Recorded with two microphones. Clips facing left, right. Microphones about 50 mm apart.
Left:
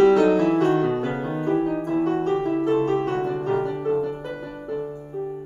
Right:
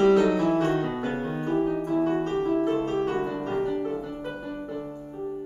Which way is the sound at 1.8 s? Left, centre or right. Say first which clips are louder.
Left 2 dB; left.